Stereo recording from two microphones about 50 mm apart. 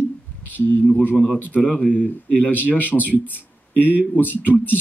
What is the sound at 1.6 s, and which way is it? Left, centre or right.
Speech, left.